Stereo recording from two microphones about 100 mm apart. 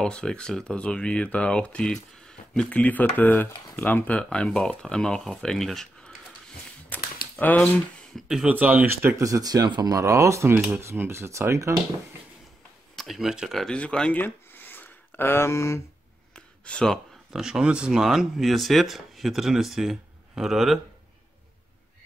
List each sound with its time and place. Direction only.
0.0 s speech: 10° left (ahead or behind)
6.9 s a sound: 15° left (ahead or behind)
8.2 s speech: 5° right (ahead or behind)
8.5 s speech: 15° right (ahead or behind)
12.9 s speech: centre (ahead or behind); by 15.8 s 30° left (ahead or behind)
16.3 s a sound: 10° left (ahead or behind)
17.4 s speech: 5° right (ahead or behind)